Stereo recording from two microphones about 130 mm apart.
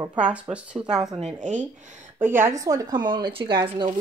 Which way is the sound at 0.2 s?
10° right (ahead or behind).